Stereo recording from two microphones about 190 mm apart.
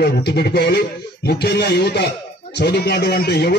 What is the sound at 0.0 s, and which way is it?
Speech, 55° left (ahead or behind).